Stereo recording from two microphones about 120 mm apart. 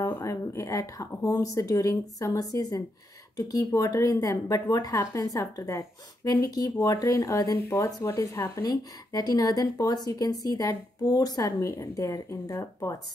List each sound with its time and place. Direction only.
0.0 s speech: 20° left (ahead or behind)